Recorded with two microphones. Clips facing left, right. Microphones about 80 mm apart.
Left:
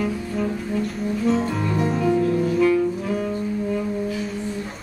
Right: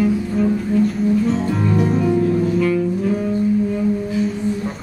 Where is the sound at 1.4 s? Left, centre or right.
Centre.